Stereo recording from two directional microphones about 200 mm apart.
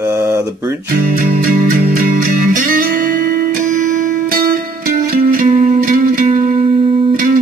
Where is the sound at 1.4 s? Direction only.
45° right (ahead or behind).